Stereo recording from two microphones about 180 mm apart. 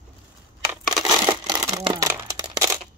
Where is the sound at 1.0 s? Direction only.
25° right (ahead or behind).